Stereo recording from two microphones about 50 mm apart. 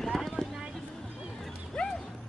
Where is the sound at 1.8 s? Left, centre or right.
Centre.